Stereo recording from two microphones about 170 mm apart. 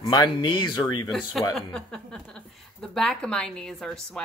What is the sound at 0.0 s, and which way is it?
Speech, 25° left (ahead or behind).